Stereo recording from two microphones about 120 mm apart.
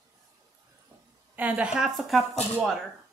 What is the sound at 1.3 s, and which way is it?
Speech, 15° right (ahead or behind).